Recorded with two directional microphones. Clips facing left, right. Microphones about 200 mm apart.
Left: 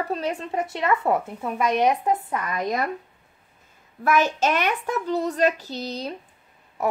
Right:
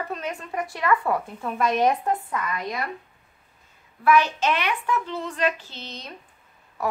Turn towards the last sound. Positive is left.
turn(degrees=35)  # may be behind; listen again after turning